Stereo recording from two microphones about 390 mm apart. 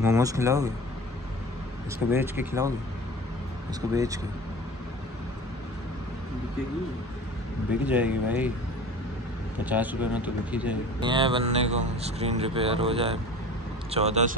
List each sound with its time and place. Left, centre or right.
0.0 s a man's voice: centre
2.0 s a man's voice: centre
3.9 s a man's voice: centre
7.8 s speech: centre
9.7 s a man's voice: centre